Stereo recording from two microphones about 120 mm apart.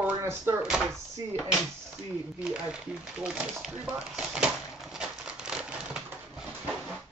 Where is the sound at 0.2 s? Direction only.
20° right (ahead or behind).